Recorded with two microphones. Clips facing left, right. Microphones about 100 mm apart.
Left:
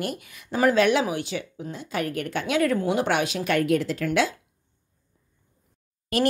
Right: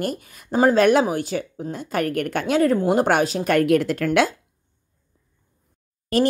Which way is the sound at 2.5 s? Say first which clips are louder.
Right 4 dB; 30° right (ahead or behind).